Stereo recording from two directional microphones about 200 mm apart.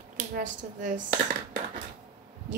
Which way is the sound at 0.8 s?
40° right (ahead or behind).